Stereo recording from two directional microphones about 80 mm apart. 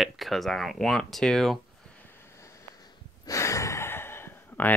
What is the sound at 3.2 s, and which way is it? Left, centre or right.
Sigh, left.